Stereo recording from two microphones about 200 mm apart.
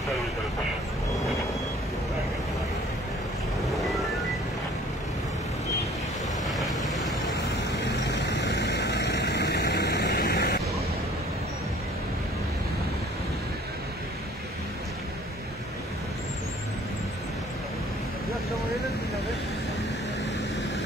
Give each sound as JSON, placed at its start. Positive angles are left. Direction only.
{"t": 6.4, "sound": "vehicle", "side_deg": 0}
{"t": 8.0, "sound": "vehicle", "side_deg": 60}